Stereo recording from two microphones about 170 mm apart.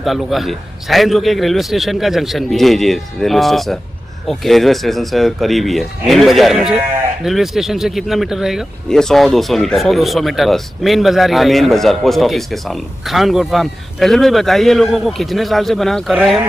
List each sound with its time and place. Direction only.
0.0 s speech: centre (ahead or behind)